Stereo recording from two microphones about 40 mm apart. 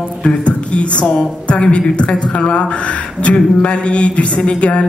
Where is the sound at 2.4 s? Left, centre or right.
Left.